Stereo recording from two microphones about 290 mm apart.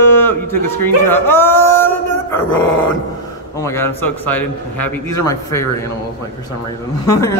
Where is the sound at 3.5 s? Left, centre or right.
Centre.